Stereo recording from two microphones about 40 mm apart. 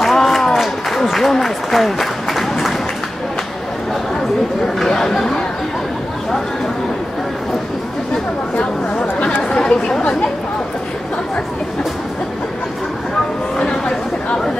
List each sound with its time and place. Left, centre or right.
0.0 s applause: centre
4.8 s speech: centre
8.5 s chatter: left
9.4 s chatter: centre
13.6 s chatter: left